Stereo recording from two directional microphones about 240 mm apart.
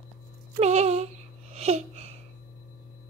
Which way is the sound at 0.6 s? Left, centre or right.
Right.